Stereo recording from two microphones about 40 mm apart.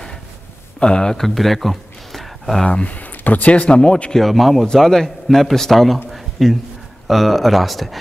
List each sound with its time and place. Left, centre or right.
0.7 s speech: left
1.2 s a sound: centre
2.6 s speech: left
3.7 s speech: left
4.1 s a man's voice: centre
6.0 s a sound: centre
7.1 s speech: centre